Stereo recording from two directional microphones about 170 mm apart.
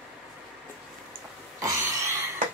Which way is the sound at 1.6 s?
20° right (ahead or behind).